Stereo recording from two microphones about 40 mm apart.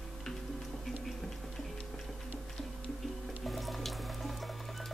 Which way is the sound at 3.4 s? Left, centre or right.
Centre.